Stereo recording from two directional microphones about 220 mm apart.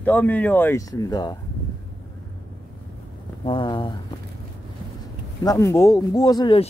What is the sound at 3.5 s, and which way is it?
Speech, 20° left (ahead or behind).